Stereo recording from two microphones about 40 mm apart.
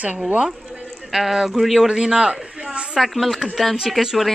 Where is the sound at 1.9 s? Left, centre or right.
Centre.